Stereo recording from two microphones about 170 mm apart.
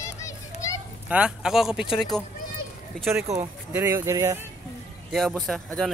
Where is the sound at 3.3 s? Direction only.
15° right (ahead or behind).